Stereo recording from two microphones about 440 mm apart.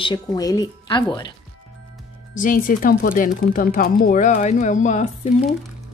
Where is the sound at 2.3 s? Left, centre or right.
Centre.